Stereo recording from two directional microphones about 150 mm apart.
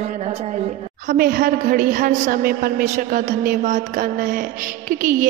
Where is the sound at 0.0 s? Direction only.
45° right (ahead or behind).